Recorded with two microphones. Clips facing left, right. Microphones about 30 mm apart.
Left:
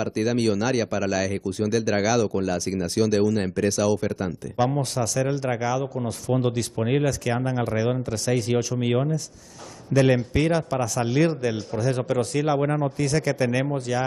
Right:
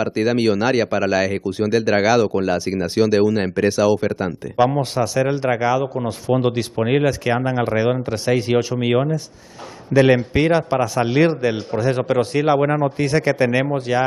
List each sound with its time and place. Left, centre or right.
0.0 s speech: right